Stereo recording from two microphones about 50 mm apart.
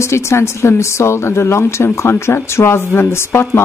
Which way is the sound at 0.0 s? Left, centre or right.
Left.